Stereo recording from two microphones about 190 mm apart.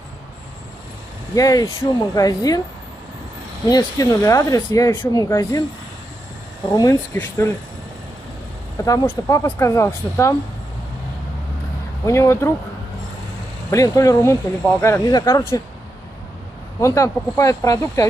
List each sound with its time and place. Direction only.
1.3 s speech: 20° left (ahead or behind)
3.6 s speech: 20° left (ahead or behind)
6.7 s speech: 20° left (ahead or behind)
8.8 s speech: 15° left (ahead or behind)
12.1 s speech: 15° left (ahead or behind)
13.7 s speech: 15° left (ahead or behind)
16.8 s speech: 15° left (ahead or behind)